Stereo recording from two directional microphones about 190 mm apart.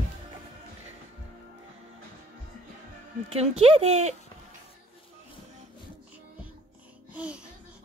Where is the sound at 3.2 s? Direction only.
35° right (ahead or behind).